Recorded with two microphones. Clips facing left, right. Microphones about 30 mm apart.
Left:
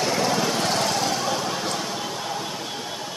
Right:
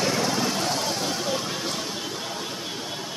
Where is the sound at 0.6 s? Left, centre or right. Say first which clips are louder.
Left 3 dB; left.